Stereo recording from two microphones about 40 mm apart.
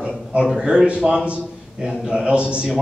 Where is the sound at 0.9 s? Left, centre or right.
Right.